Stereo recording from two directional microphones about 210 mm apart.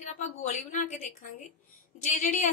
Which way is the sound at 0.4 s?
35° left (ahead or behind).